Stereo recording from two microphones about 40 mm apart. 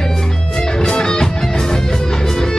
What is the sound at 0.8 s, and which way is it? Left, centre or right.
Music, centre.